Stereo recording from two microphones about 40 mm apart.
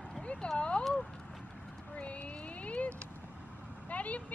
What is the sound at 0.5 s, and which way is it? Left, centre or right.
Clip-clop, left.